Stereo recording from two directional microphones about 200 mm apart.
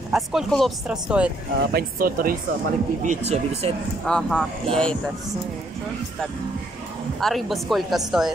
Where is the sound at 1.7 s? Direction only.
50° right (ahead or behind).